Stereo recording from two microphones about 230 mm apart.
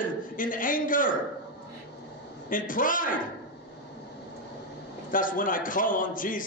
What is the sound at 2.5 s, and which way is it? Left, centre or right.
Speech, left.